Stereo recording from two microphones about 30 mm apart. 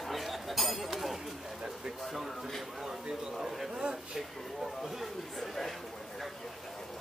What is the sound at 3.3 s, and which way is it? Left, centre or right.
Speech, centre.